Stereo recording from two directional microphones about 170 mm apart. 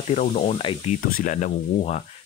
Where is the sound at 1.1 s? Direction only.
55° left (ahead or behind).